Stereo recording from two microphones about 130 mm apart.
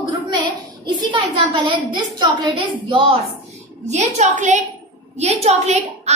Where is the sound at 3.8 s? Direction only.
60° right (ahead or behind).